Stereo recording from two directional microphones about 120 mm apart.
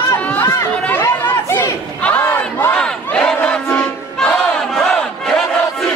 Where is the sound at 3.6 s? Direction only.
15° left (ahead or behind).